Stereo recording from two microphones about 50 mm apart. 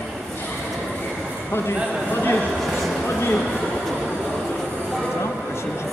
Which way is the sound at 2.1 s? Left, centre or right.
Left.